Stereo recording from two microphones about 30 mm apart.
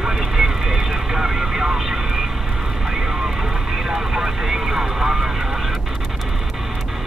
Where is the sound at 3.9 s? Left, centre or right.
Right.